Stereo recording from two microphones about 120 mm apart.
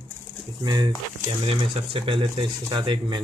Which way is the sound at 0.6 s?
35° right (ahead or behind).